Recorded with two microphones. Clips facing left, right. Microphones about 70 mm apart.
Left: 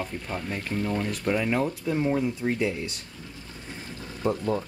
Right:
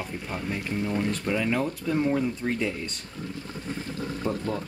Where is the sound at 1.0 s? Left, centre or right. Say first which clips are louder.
Even; centre.